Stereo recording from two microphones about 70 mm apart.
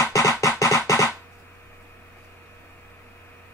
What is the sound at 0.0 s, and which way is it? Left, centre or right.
Music, left.